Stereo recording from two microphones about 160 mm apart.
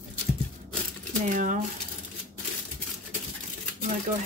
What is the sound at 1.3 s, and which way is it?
Speech, 55° right (ahead or behind).